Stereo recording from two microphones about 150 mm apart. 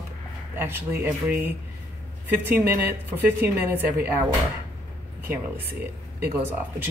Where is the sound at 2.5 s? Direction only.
15° right (ahead or behind).